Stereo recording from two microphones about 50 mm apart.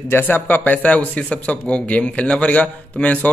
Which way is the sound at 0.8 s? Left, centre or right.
Left.